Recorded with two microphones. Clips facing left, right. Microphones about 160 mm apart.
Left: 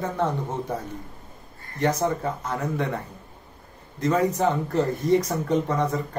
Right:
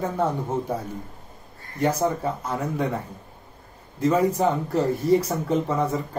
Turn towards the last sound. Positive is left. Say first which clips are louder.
# even
turn(degrees=-5)  # may be behind; listen again after turning